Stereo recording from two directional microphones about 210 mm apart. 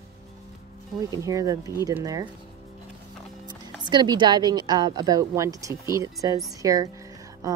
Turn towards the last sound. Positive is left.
turn(degrees=-15)  # may be behind; listen again after turning